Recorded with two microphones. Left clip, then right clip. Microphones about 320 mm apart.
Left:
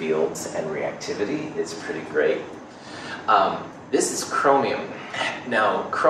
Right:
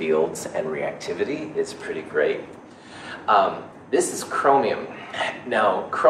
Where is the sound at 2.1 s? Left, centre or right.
Right.